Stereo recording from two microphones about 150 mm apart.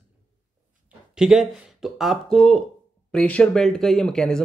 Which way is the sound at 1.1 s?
5° right (ahead or behind).